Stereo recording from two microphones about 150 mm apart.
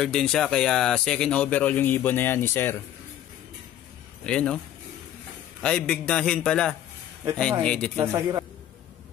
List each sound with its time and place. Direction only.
0.0 s speech: 5° left (ahead or behind)
4.3 s speech: 5° left (ahead or behind)
5.6 s a man's voice: 5° left (ahead or behind)
8.1 s a man's voice: 20° right (ahead or behind)